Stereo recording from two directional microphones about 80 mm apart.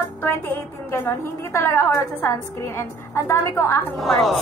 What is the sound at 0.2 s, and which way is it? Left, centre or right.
A woman's voice, left.